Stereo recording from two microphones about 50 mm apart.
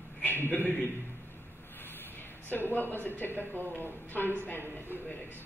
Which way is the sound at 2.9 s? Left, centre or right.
Left.